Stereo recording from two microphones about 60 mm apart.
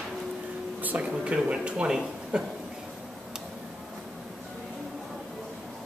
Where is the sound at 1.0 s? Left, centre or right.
Centre.